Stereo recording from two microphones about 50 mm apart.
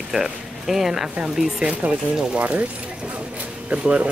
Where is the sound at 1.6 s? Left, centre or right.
Centre.